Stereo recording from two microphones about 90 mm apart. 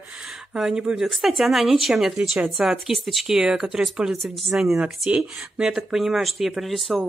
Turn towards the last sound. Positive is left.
turn(degrees=0)  # may be behind; listen again after turning